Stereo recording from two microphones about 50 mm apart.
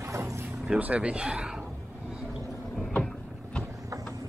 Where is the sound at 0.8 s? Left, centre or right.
Right.